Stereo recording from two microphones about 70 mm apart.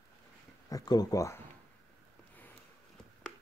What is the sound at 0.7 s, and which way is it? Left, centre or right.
Speech, left.